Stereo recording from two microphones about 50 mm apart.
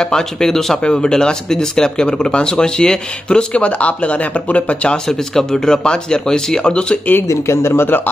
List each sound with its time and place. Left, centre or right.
0.0 s speech: centre; by 4.9 s left
4.9 s speech: centre
7.2 s speech: left